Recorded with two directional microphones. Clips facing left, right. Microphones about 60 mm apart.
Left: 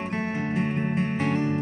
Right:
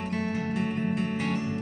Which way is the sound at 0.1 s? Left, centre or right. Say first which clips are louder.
Left 1 dB; left.